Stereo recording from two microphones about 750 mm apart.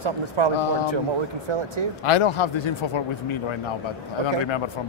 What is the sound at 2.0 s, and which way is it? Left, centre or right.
Speech, left.